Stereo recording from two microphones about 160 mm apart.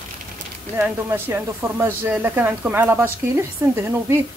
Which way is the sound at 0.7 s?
10° right (ahead or behind).